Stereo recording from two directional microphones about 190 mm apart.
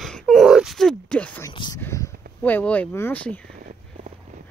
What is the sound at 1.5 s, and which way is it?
Speech, 25° left (ahead or behind).